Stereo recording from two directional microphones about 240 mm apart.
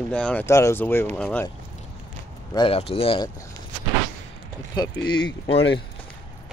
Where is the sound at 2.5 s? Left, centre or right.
Left.